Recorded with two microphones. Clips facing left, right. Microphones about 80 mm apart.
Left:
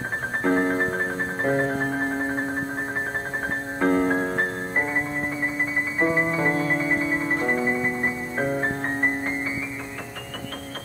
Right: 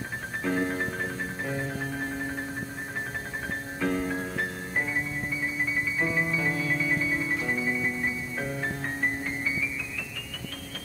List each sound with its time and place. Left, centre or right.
0.4 s music: left
3.8 s music: left